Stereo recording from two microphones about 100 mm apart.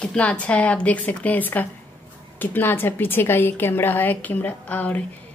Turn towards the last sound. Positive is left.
turn(degrees=15)  # may be behind; listen again after turning